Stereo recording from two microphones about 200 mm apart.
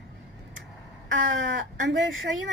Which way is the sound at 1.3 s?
70° right (ahead or behind).